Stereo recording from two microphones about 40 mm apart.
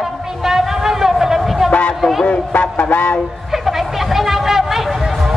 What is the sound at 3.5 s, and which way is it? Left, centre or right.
Vehicle, centre.